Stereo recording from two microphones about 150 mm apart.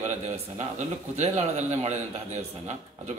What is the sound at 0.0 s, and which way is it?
A man's voice, 50° right (ahead or behind).